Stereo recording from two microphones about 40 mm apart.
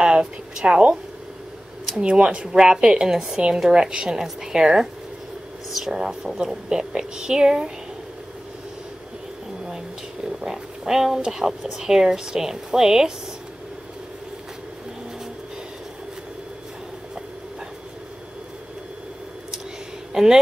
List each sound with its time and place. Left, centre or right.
0.0 s a woman's voice: right
2.0 s speech: right
10.2 s a sound: centre
11.3 s speech: centre
20.1 s speech: centre